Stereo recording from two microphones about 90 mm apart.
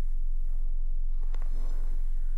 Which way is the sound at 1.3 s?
20° left (ahead or behind).